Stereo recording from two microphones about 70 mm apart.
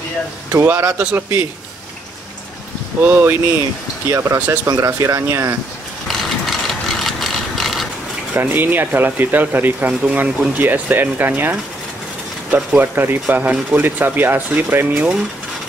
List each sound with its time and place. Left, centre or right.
0.5 s speech: right
3.1 s speech: right
6.0 s ratchet: centre
8.4 s speech: right